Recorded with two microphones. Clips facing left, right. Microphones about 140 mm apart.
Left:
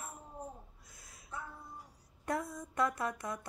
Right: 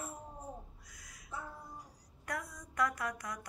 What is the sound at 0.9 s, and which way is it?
Crow, 25° left (ahead or behind).